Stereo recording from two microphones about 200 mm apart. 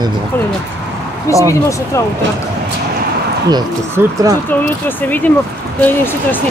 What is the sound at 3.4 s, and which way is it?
Speech, 20° right (ahead or behind).